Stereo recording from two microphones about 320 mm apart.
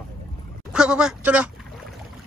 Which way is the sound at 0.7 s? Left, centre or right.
Centre.